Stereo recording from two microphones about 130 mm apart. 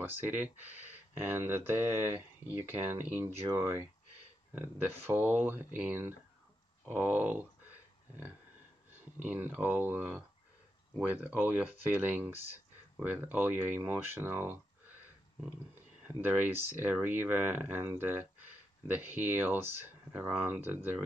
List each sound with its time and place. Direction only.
0.0 s speech: 15° right (ahead or behind)
9.2 s speech: 15° right (ahead or behind)
11.3 s speech: 15° right (ahead or behind)
15.7 s speech: 15° right (ahead or behind)